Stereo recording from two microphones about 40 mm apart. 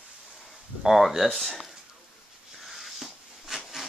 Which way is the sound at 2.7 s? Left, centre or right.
Centre.